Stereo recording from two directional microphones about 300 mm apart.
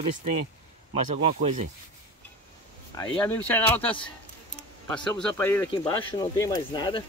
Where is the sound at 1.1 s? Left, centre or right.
Right.